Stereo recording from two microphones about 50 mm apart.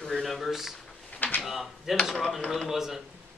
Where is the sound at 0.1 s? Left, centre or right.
Centre.